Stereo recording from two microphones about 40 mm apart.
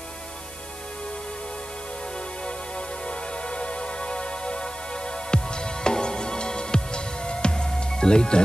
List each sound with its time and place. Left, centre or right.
3.4 s music: left